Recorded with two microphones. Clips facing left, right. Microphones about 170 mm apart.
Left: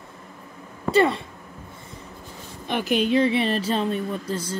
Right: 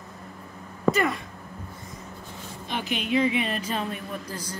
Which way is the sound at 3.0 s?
35° left (ahead or behind).